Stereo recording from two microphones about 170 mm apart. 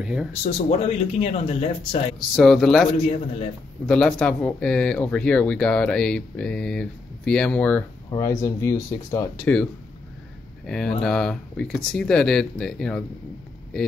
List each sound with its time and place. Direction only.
0.0 s speech: 5° right (ahead or behind)
0.4 s speech: 40° left (ahead or behind)
2.1 s speech: centre (ahead or behind)
8.1 s speech: 15° left (ahead or behind)
10.7 s speech: 5° left (ahead or behind)